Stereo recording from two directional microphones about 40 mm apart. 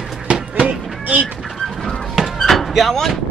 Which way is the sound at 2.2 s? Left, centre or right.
Centre.